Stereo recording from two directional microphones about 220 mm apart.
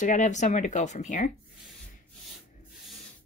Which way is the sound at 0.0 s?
35° left (ahead or behind).